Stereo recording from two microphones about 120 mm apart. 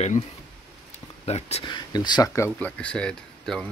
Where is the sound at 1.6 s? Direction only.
40° left (ahead or behind).